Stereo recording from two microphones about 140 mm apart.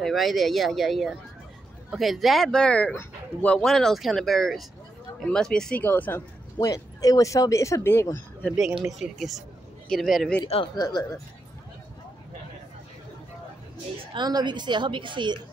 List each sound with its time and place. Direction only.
0.0 s speech: centre (ahead or behind)
6.6 s speech: 25° left (ahead or behind)
9.0 s speech: centre (ahead or behind)
10.4 s speech: 35° left (ahead or behind)
14.1 s a woman's voice: 30° right (ahead or behind)